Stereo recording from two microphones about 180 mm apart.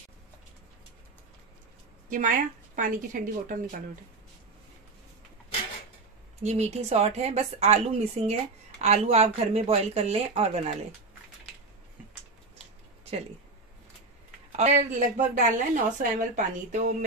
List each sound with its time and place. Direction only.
2.0 s speech: 50° right (ahead or behind)
6.4 s speech: 35° right (ahead or behind)
14.6 s speech: 45° right (ahead or behind)